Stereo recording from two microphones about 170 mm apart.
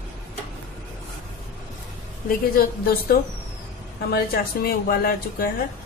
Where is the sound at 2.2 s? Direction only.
60° left (ahead or behind).